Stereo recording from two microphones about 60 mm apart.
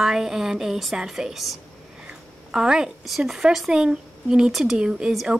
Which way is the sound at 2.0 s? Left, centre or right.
Centre.